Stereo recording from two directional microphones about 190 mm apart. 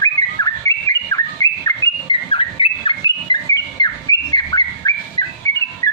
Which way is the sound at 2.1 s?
30° left (ahead or behind).